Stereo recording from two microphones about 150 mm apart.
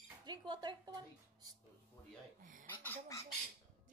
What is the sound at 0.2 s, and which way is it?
Speech, 30° right (ahead or behind).